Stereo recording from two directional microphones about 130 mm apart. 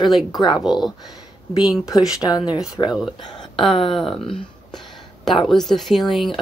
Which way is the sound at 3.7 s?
40° left (ahead or behind).